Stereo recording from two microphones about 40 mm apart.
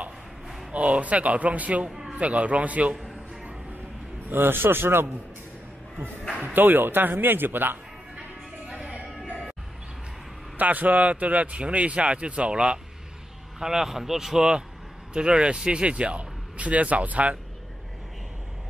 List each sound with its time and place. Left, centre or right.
0.7 s speech: right
1.9 s a sound: centre
2.1 s speech: right
4.3 s a man's voice: right
6.3 s speech: right
8.6 s music: right
10.6 s speech: right
13.6 s speech: centre; by 17.4 s right